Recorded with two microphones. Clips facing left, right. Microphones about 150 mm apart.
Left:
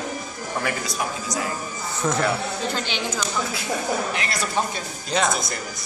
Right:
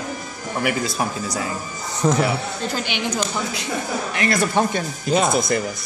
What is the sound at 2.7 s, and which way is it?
Speech, 15° right (ahead or behind).